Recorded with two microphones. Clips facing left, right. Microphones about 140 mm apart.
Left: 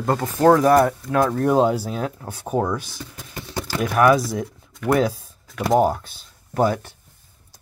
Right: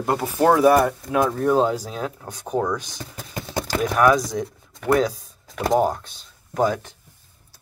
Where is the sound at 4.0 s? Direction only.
5° left (ahead or behind).